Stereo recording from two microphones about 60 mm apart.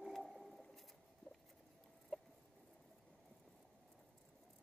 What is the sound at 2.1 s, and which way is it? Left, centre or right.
Chicken, centre.